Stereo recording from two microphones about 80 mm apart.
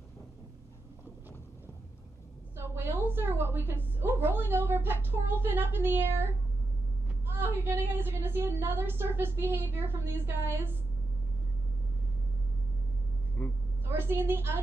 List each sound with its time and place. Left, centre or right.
2.5 s a sound: right
4.2 s a woman's voice: right
7.2 s a woman's voice: right
13.4 s vehicle: left
13.8 s a woman's voice: right